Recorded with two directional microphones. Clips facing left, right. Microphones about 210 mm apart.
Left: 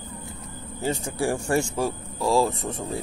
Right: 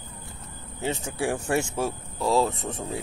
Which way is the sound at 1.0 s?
5° right (ahead or behind).